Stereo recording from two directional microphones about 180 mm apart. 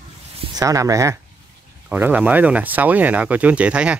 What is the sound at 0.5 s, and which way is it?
Speech, 20° right (ahead or behind).